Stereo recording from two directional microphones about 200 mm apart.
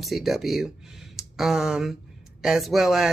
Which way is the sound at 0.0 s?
Centre (ahead or behind).